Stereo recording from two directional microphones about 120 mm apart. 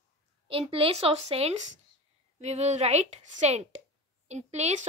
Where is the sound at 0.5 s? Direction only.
50° right (ahead or behind).